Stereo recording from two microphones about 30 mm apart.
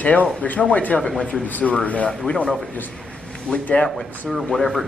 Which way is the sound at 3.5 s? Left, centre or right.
Left.